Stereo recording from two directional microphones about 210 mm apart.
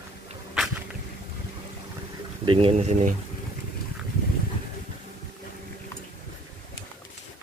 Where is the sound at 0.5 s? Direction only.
Centre (ahead or behind).